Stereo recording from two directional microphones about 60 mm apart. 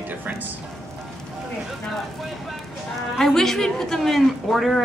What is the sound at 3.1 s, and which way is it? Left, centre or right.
A woman's voice, centre.